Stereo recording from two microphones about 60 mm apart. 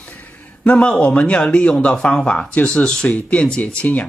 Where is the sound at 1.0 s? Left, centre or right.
Centre.